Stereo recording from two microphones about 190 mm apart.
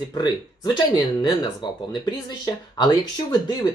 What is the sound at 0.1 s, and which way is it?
Speech, 20° left (ahead or behind).